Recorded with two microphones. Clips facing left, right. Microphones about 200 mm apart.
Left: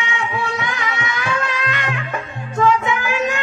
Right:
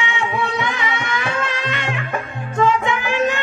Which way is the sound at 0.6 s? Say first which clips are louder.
Right 2 dB; centre (ahead or behind).